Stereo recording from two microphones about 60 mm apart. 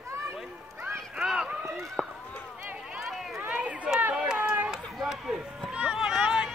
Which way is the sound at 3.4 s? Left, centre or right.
Right.